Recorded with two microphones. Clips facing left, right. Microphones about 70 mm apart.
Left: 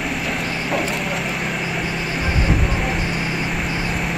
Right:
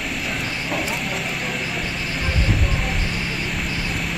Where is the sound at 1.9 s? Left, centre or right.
Centre.